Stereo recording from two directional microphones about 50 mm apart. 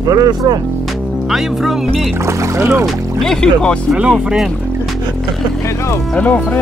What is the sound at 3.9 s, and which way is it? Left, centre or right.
Speech, centre.